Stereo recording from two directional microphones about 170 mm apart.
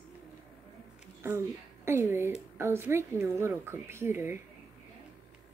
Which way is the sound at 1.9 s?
15° right (ahead or behind).